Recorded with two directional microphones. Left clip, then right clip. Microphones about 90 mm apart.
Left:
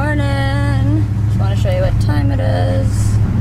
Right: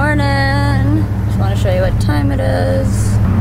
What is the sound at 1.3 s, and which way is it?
Speech, 5° right (ahead or behind).